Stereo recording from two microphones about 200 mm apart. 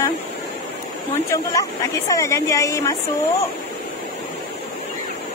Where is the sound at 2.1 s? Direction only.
15° left (ahead or behind).